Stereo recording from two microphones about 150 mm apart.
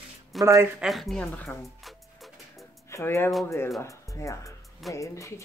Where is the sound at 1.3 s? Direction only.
10° left (ahead or behind).